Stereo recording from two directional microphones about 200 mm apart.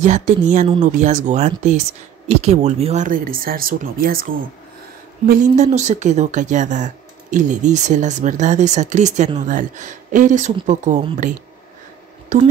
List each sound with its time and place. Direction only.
0.0 s speech: 40° right (ahead or behind)
12.3 s speech: 35° right (ahead or behind)